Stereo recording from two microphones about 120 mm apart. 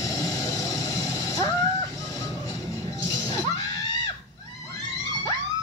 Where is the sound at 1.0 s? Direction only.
25° left (ahead or behind).